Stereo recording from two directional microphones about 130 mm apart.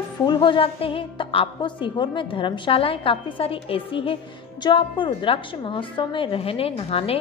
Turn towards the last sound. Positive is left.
turn(degrees=45)  # may be behind; listen again after turning